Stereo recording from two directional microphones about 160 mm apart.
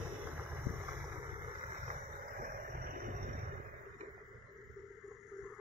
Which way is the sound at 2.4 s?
65° right (ahead or behind).